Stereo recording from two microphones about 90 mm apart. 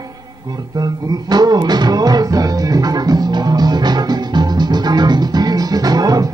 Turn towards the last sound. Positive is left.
turn(degrees=-45)  # may be behind; listen again after turning